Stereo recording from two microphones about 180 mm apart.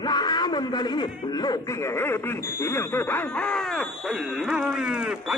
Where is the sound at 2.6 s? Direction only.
15° left (ahead or behind); by 5.1 s 5° right (ahead or behind).